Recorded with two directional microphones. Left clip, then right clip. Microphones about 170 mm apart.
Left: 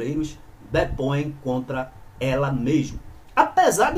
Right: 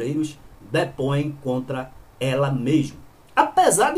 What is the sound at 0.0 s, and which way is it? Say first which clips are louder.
A woman's voice: right 2 dB; 10° right (ahead or behind).